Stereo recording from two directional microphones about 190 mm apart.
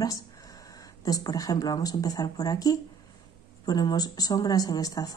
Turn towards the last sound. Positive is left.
turn(degrees=20)  # may be behind; listen again after turning